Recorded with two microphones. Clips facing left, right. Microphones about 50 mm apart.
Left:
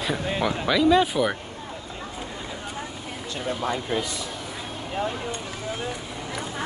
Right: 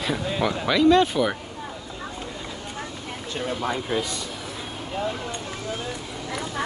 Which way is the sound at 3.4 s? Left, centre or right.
Centre.